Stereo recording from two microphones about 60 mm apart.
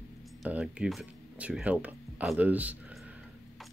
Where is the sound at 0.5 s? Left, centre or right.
Right.